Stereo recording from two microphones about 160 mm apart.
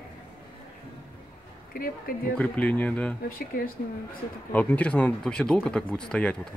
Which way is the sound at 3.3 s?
65° left (ahead or behind).